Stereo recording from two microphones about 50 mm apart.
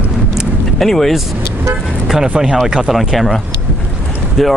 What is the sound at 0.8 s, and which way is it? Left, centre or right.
Speech, centre.